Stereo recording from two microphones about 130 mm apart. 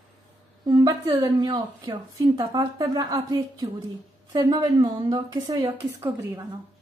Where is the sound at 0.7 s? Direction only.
35° right (ahead or behind).